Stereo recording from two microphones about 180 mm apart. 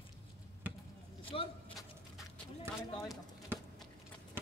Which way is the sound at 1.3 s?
30° left (ahead or behind).